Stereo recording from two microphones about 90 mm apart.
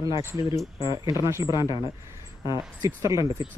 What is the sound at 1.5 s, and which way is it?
Speech, 55° left (ahead or behind).